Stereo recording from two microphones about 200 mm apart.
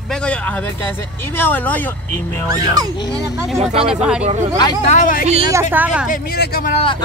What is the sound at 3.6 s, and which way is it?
Speech, 30° right (ahead or behind).